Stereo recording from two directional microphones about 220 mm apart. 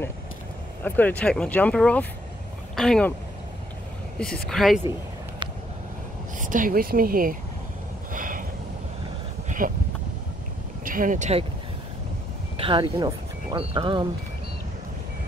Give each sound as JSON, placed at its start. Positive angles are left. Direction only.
{"t": 0.8, "sound": "speech", "side_deg": 5}
{"t": 4.2, "sound": "speech", "side_deg": 5}
{"t": 6.3, "sound": "speech", "side_deg": -35}
{"t": 8.1, "sound": "a sound", "side_deg": -35}
{"t": 9.6, "sound": "speech", "side_deg": -40}
{"t": 10.8, "sound": "speech", "side_deg": -40}
{"t": 12.5, "sound": "speech", "side_deg": -25}